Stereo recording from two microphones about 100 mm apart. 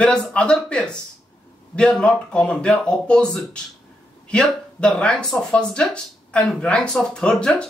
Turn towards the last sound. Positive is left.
turn(degrees=10)  # may be behind; listen again after turning